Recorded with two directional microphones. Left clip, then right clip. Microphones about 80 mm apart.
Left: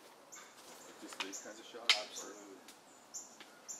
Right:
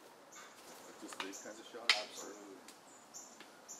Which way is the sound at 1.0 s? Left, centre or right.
Centre.